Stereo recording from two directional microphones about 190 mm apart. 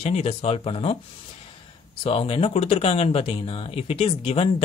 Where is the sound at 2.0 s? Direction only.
30° left (ahead or behind).